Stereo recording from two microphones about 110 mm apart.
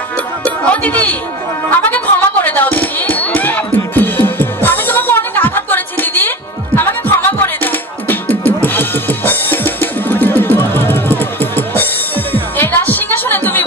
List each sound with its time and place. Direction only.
0.7 s speech: 15° left (ahead or behind)
1.8 s music: 15° left (ahead or behind)